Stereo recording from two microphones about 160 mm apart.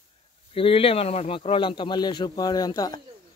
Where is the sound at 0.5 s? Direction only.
35° left (ahead or behind).